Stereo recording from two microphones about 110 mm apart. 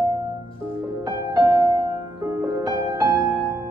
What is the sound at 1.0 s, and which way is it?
Music, 40° right (ahead or behind).